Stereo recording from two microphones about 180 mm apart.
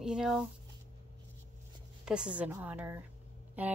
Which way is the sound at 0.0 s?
5° right (ahead or behind).